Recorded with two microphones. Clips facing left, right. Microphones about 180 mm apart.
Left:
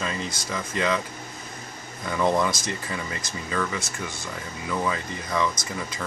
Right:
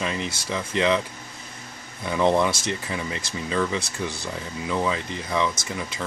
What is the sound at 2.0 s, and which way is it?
Speech, 20° right (ahead or behind).